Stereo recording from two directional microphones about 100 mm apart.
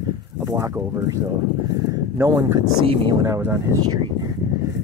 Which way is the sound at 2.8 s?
60° right (ahead or behind).